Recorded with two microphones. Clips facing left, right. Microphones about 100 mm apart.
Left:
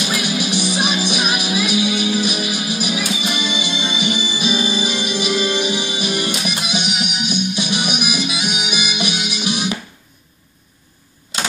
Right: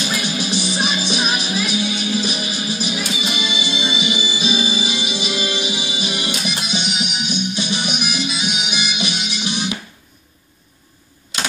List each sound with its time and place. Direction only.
0.0 s music: 15° left (ahead or behind)
0.5 s music: 60° left (ahead or behind)
1.0 s music: 10° left (ahead or behind)
1.7 s music: 60° left (ahead or behind)
3.2 s music: 50° left (ahead or behind)
7.5 s music: 10° left (ahead or behind)
8.2 s music: 55° left (ahead or behind)
9.2 s music: 10° left (ahead or behind)